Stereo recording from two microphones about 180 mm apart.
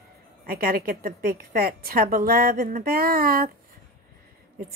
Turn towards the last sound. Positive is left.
turn(degrees=-55)  # may be behind; listen again after turning